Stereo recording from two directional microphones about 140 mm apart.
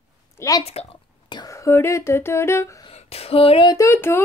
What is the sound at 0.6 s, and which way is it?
Speech, 45° left (ahead or behind).